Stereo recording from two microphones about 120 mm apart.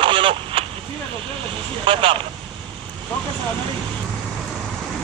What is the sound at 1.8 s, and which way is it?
Speech, 45° right (ahead or behind).